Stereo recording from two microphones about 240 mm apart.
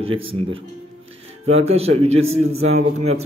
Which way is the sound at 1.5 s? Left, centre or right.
Right.